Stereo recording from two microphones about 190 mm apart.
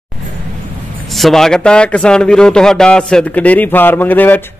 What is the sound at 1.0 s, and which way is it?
A man's voice, centre (ahead or behind).